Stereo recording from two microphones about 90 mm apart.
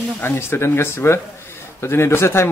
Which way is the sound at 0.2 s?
25° left (ahead or behind).